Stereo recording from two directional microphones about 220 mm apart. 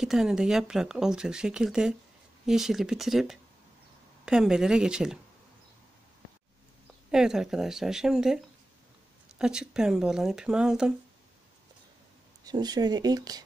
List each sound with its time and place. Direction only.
0.0 s speech: centre (ahead or behind)
7.1 s speech: centre (ahead or behind)
9.4 s speech: 5° right (ahead or behind)
12.4 s speech: 20° right (ahead or behind)